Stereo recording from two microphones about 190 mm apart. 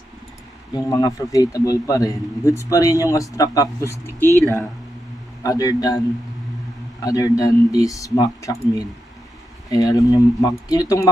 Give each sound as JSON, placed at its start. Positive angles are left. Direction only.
{"t": 0.7, "sound": "a man's voice", "side_deg": 20}
{"t": 5.4, "sound": "speech", "side_deg": 15}
{"t": 7.0, "sound": "a man's voice", "side_deg": 15}